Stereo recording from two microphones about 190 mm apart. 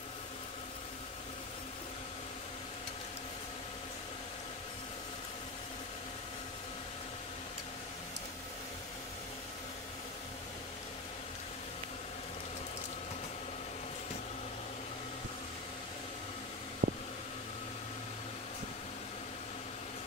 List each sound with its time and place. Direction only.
16.8 s vehicle: 50° right (ahead or behind)